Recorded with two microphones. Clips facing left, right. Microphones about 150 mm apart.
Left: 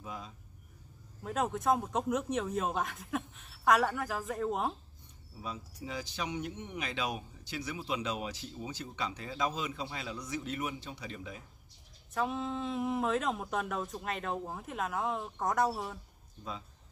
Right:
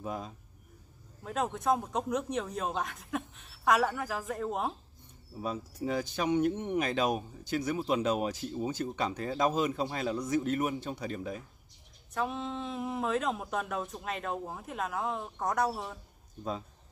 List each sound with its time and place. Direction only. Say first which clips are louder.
0.0 s speech: right 6 dB; 45° right (ahead or behind)
1.2 s speech: even; centre (ahead or behind)
5.4 s speech: right 7 dB; 50° right (ahead or behind)
12.1 s speech: even; centre (ahead or behind)